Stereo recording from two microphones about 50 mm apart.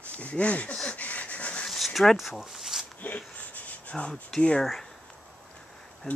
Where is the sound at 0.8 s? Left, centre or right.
Left.